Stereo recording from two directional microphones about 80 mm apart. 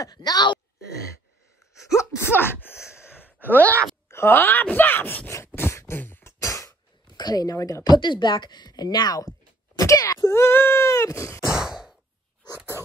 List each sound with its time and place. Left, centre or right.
0.0 s speech: left
1.7 s gasp: left
4.1 s speech: left
5.6 s throat clearing: left
6.4 s cough: left
7.1 s speech: left
7.9 s speech: left
9.8 s speech: left
10.2 s a sound: left
11.4 s a sound: centre
12.7 s a sound: left